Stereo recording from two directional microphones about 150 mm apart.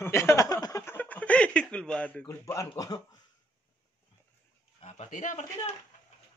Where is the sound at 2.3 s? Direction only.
20° left (ahead or behind).